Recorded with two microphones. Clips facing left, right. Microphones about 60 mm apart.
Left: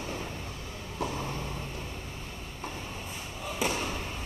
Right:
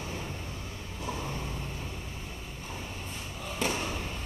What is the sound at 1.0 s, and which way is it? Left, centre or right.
Vehicle, left.